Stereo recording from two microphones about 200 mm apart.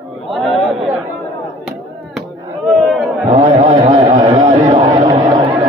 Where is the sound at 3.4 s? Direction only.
35° right (ahead or behind).